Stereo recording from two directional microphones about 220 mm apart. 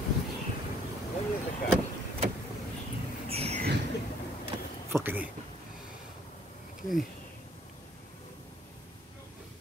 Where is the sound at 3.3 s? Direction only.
25° right (ahead or behind).